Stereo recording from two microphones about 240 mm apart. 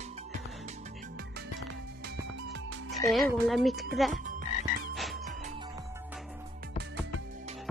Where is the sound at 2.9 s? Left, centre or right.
Centre.